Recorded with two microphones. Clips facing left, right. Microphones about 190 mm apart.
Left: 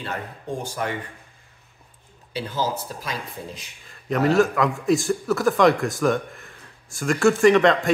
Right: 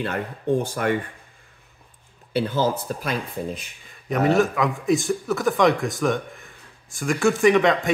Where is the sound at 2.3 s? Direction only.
55° right (ahead or behind).